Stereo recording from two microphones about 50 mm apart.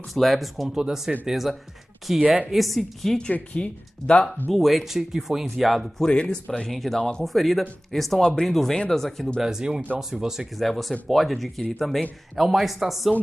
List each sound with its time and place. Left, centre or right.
0.1 s speech: centre
0.7 s speech: centre
3.5 s speech: centre
4.5 s speech: centre
6.0 s speech: centre
6.7 s speech: centre
7.0 s speech: centre
7.2 s speech: centre
8.2 s speech: centre
9.4 s speech: centre
10.6 s speech: centre